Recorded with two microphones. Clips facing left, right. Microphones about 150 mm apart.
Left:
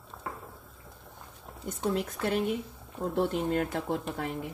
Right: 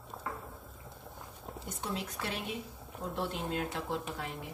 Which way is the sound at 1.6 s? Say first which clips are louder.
Left 9 dB; 50° left (ahead or behind).